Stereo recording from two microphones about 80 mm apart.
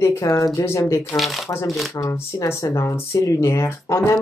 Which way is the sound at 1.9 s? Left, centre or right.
Left.